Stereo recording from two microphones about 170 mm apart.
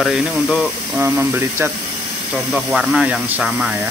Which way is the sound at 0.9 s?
15° right (ahead or behind).